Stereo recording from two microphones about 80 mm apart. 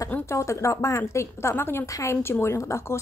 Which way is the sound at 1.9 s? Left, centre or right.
Left.